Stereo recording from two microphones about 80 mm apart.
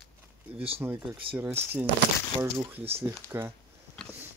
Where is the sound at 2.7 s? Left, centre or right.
Right.